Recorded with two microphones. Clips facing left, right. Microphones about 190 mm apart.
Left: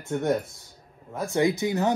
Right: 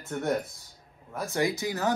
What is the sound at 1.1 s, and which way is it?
Speech, 15° left (ahead or behind).